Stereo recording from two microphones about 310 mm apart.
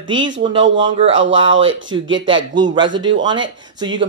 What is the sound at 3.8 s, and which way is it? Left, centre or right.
Speech, centre.